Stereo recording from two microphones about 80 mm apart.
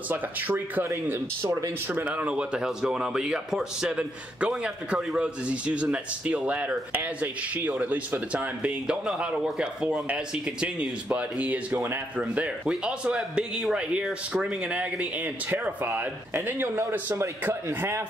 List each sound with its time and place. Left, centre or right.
0.1 s speech: right
1.0 s speech: right
1.9 s speech: right